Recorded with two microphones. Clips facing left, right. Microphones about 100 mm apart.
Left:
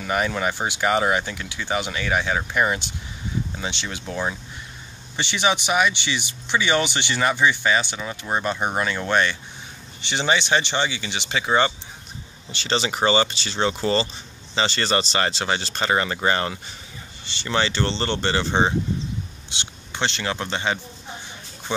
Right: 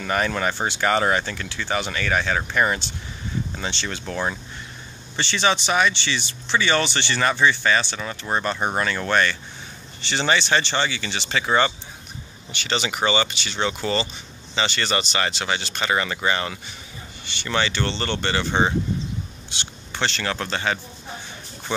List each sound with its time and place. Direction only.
0.0 s speech: 10° left (ahead or behind)
12.4 s speech: 30° left (ahead or behind)